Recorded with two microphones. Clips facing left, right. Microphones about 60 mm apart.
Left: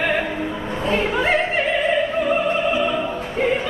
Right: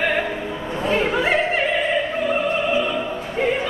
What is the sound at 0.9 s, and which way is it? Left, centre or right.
Opera, centre.